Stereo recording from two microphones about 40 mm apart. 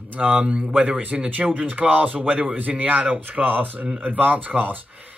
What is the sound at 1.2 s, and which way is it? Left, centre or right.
Speech, right.